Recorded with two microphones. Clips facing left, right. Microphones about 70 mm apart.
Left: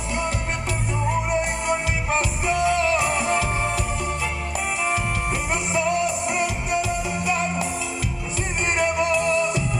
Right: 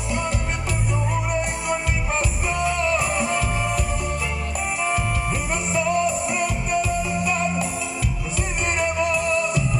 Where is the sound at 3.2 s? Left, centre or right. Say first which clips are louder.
Left 1 dB; left.